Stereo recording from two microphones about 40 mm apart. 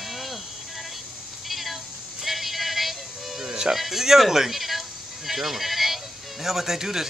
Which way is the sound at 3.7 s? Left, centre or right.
Centre.